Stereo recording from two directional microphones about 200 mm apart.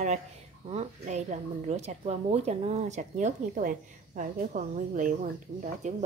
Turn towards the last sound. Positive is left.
turn(degrees=-35)  # may be behind; listen again after turning